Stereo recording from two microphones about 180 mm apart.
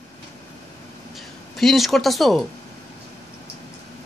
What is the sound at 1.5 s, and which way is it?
Speech, centre (ahead or behind).